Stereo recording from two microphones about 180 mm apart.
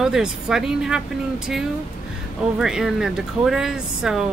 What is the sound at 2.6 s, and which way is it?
Speech, 5° right (ahead or behind).